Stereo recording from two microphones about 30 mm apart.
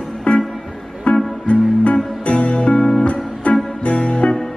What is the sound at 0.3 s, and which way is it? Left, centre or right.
Music, left.